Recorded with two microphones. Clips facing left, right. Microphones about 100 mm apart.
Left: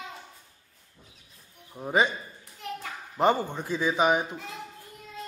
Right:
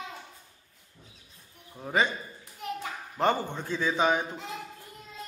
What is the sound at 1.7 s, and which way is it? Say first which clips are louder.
Speech: left 2 dB; 15° left (ahead or behind).